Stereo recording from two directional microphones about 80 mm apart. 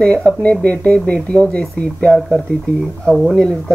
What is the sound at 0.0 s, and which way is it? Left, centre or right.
Speech, centre.